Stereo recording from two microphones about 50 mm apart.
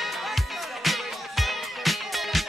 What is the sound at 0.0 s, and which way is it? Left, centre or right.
Music, centre.